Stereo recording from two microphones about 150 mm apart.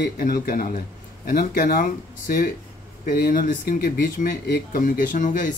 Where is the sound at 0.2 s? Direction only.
75° left (ahead or behind).